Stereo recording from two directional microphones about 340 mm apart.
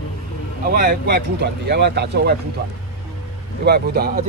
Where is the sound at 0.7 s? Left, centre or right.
Right.